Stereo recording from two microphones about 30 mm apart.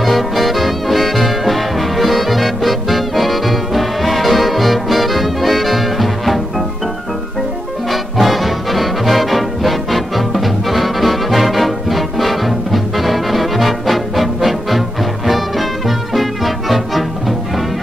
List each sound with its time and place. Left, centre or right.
0.0 s music: centre
7.9 s music: centre